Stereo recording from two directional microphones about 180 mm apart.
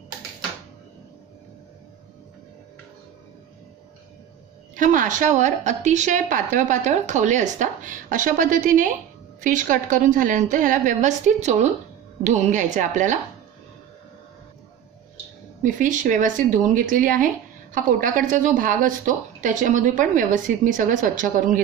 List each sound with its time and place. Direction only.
4.7 s a woman's voice: 45° right (ahead or behind)
15.6 s a woman's voice: 45° right (ahead or behind)